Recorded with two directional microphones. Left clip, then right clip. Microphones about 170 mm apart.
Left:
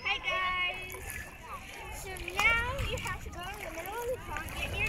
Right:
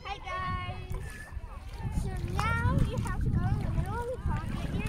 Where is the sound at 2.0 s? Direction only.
10° right (ahead or behind).